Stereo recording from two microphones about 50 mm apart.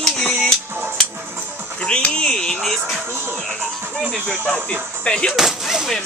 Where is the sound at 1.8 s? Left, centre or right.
Left.